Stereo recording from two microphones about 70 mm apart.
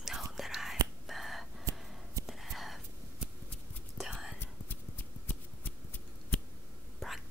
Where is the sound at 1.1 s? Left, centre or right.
Centre.